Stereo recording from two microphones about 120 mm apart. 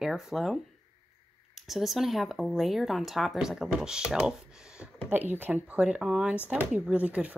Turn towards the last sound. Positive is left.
turn(degrees=-10)  # may be behind; listen again after turning